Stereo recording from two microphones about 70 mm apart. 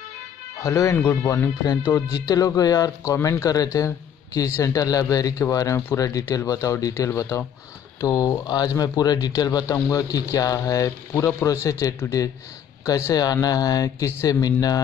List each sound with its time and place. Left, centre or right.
0.6 s speech: left
1.9 s speech: left
3.2 s speech: left
9.8 s speech: left